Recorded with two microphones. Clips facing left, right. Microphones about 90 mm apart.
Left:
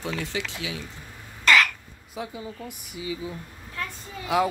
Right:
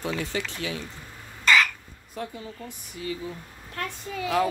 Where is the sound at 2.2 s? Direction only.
5° left (ahead or behind).